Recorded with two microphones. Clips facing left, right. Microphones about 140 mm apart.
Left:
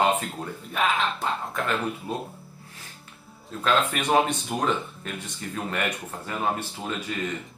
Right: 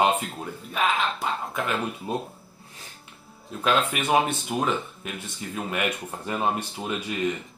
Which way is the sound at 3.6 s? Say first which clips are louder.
Even; 10° right (ahead or behind).